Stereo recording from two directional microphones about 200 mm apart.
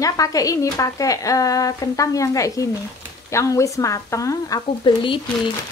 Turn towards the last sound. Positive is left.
turn(degrees=20)  # may be behind; listen again after turning